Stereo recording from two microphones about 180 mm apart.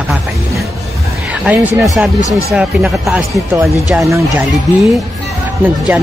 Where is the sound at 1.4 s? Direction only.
5° right (ahead or behind).